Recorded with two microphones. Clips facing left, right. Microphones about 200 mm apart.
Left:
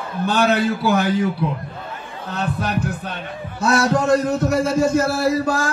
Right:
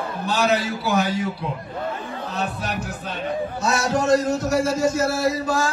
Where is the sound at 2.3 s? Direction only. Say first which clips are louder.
Left 6 dB; 60° left (ahead or behind).